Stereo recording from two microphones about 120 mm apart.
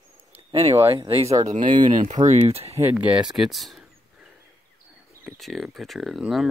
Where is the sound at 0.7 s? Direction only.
20° right (ahead or behind).